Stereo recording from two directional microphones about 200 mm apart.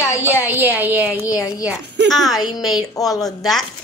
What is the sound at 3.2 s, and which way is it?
Speech, centre (ahead or behind).